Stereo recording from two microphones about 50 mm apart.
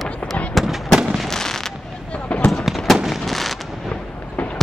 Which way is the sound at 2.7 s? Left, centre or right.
Centre.